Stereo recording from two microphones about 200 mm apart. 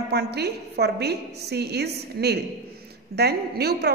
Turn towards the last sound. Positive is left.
turn(degrees=-55)  # may be behind; listen again after turning